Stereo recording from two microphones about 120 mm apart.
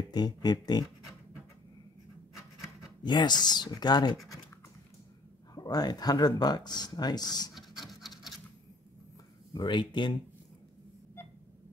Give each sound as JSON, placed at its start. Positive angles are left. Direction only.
{"t": 0.1, "sound": "speech", "side_deg": 35}
{"t": 3.0, "sound": "speech", "side_deg": 40}
{"t": 5.5, "sound": "speech", "side_deg": 30}
{"t": 7.5, "sound": "scratch", "side_deg": 0}
{"t": 9.5, "sound": "speech", "side_deg": 40}